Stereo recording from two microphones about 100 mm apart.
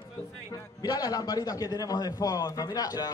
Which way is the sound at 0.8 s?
40° left (ahead or behind).